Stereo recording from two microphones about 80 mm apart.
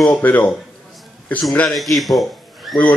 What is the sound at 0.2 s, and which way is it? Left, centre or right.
Speech, left.